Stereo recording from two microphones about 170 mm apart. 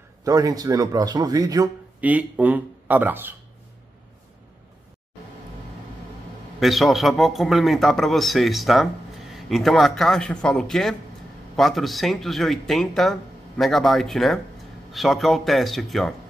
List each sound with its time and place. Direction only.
0.2 s a man's voice: 20° right (ahead or behind)
2.0 s speech: 10° right (ahead or behind)
6.6 s a man's voice: centre (ahead or behind)